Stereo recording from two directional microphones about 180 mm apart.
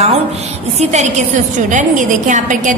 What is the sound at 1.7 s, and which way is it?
A woman's voice, 45° right (ahead or behind).